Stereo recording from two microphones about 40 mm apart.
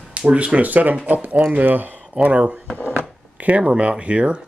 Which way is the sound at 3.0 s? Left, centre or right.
Right.